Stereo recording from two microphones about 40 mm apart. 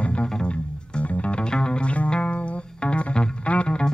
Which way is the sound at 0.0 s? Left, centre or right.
Left.